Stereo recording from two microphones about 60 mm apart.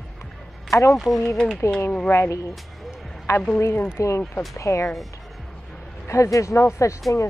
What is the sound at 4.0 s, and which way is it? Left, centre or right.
Speech, left.